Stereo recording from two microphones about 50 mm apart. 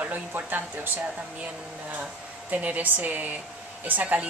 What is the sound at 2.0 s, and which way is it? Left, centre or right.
Speech, right.